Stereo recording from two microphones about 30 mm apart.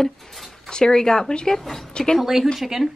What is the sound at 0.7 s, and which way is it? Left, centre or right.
Speech, left.